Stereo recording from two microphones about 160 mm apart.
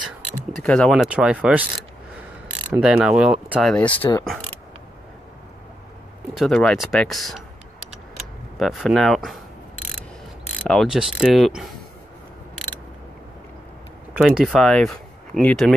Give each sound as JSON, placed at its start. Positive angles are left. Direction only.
{"t": 0.6, "sound": "speech", "side_deg": 5}
{"t": 2.8, "sound": "speech", "side_deg": -5}
{"t": 3.6, "sound": "speech", "side_deg": 10}
{"t": 3.9, "sound": "speech", "side_deg": 35}
{"t": 6.3, "sound": "speech", "side_deg": 0}
{"t": 8.5, "sound": "speech", "side_deg": 0}
{"t": 10.6, "sound": "speech", "side_deg": 5}
{"t": 14.1, "sound": "speech", "side_deg": -5}